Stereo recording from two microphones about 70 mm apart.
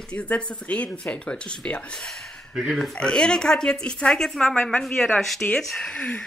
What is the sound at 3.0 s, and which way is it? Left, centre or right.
Speech, centre.